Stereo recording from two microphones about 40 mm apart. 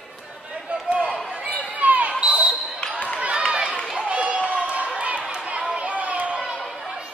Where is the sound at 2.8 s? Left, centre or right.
Left.